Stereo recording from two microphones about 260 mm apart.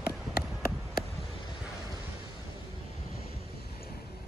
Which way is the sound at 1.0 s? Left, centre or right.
Left.